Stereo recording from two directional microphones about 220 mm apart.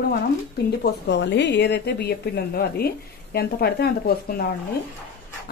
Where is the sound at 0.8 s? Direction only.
50° left (ahead or behind).